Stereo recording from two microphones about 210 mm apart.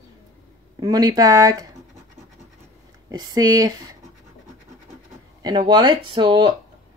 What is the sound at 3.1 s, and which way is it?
Speech, 20° right (ahead or behind).